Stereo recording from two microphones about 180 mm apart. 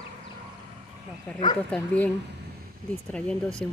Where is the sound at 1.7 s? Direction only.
5° left (ahead or behind).